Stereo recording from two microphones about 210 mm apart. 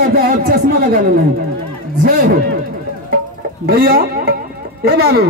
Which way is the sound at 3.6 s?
45° right (ahead or behind).